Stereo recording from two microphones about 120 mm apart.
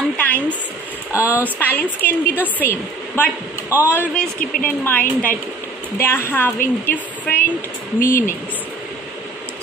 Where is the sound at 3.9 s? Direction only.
15° left (ahead or behind).